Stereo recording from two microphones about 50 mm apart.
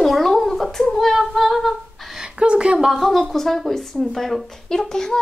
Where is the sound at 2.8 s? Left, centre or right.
Centre.